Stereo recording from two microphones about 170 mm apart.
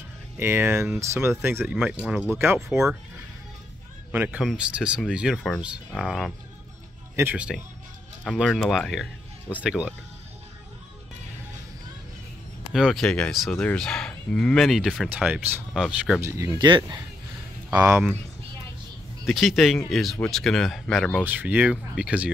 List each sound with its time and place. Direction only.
0.4 s speech: 15° right (ahead or behind)
4.1 s speech: 10° right (ahead or behind)
8.2 s speech: 5° left (ahead or behind)
12.7 s speech: centre (ahead or behind)
16.2 s speech: 15° right (ahead or behind)
16.5 s speech: 25° right (ahead or behind)
17.6 s speech: 10° right (ahead or behind)
19.2 s speech: centre (ahead or behind)
21.2 s speech: 10° right (ahead or behind)